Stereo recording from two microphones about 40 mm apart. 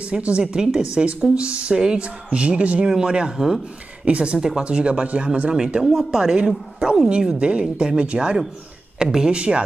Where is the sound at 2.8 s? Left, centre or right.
Centre.